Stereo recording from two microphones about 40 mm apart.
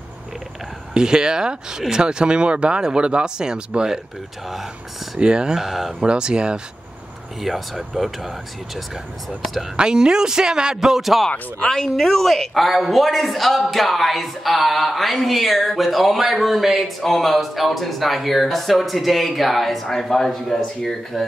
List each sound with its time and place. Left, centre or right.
0.9 s speech: centre
5.2 s speech: right
5.6 s a man's voice: centre
6.1 s speech: right
7.4 s a man's voice: centre
9.8 s a man's voice: centre
11.7 s a man's voice: centre